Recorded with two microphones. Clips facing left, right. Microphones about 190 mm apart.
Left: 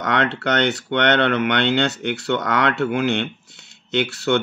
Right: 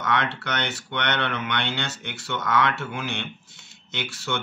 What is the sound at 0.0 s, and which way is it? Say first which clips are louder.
Speech: left 5 dB; 65° left (ahead or behind).